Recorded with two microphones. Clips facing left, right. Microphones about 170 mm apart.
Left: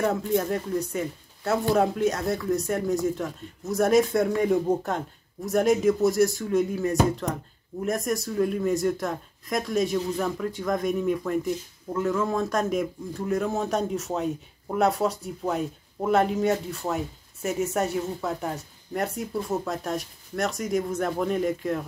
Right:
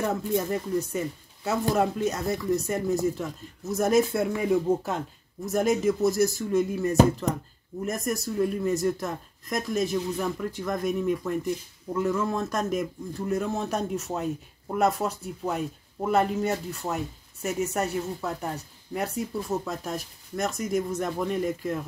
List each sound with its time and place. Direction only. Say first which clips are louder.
0.0 s speech: left 2 dB; centre (ahead or behind)